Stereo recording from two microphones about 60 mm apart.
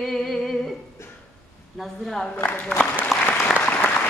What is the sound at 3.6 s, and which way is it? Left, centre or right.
Applause, left.